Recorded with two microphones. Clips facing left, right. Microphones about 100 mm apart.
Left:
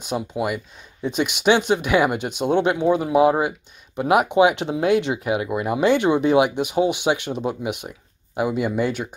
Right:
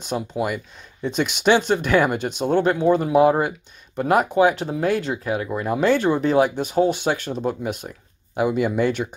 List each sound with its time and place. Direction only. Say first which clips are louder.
0.0 s speech: even; 10° left (ahead or behind)
2.9 s speech: right 1 dB; 5° left (ahead or behind)